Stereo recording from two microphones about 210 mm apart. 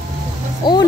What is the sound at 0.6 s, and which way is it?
Speech, 20° left (ahead or behind).